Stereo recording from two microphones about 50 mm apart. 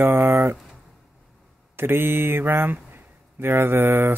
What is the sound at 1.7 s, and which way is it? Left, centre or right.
Speech, right.